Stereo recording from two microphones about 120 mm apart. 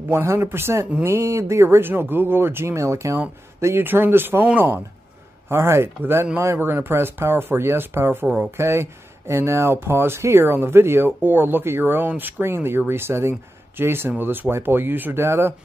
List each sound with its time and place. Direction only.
0.1 s speech: 20° right (ahead or behind)